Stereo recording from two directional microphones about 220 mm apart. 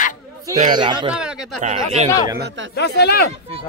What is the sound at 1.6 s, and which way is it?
Speech, 30° right (ahead or behind).